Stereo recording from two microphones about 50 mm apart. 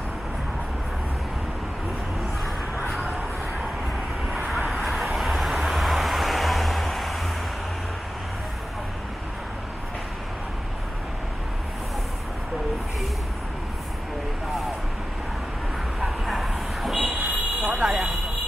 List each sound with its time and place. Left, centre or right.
2.9 s a sound: centre
4.3 s vehicle: centre
16.0 s bow-wow: centre
17.0 s fire alarm: right